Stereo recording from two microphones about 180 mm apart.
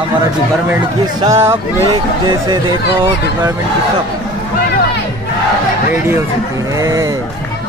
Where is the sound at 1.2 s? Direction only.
15° right (ahead or behind).